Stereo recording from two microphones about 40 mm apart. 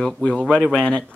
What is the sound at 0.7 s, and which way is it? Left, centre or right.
Speech, left.